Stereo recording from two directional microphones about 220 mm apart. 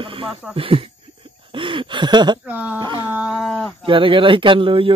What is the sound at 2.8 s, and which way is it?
Speech, 20° right (ahead or behind).